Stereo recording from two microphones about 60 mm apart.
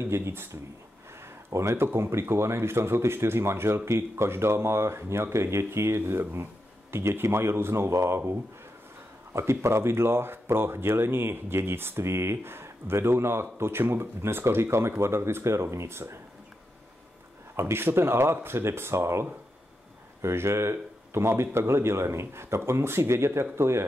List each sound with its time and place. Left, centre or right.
0.0 s speech: right
9.3 s speech: right
17.6 s speech: right